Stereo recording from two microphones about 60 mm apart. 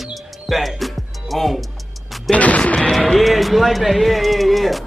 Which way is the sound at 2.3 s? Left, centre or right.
Left.